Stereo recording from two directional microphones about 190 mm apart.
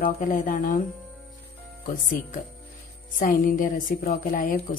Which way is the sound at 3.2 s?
45° left (ahead or behind).